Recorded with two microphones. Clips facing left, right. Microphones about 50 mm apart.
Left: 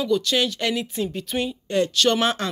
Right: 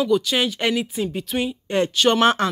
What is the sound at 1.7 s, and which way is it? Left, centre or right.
Speech, right.